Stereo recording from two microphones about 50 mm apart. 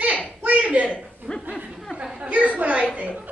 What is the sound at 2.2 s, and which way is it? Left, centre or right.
Speech, right.